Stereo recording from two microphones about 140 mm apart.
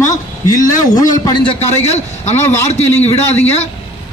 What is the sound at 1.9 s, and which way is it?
Speech, 55° left (ahead or behind).